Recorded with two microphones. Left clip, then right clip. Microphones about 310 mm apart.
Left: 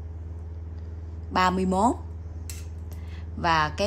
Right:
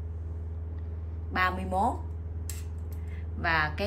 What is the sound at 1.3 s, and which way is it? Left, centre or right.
Speech, centre.